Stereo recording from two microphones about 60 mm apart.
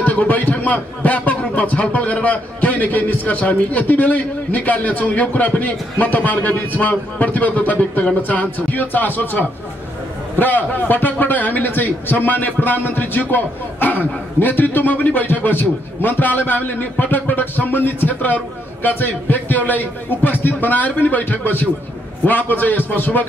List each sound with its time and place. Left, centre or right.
0.0 s a man's voice: left